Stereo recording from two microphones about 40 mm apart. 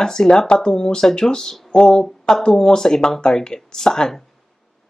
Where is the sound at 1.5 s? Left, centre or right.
Centre.